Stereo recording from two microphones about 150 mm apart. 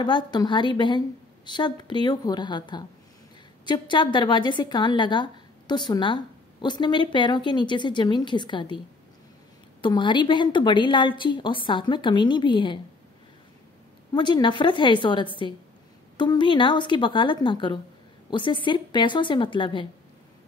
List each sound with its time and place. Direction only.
0.0 s a woman's voice: 30° left (ahead or behind)
14.1 s a woman's voice: 30° left (ahead or behind)